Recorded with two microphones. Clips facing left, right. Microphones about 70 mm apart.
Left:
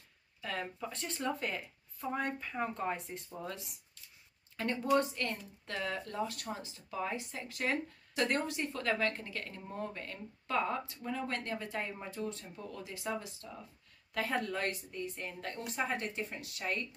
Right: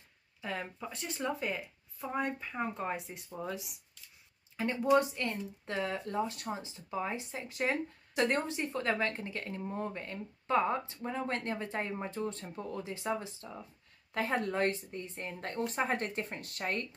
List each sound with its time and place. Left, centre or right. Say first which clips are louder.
0.4 s a woman's voice: even; centre; by 16.8 s right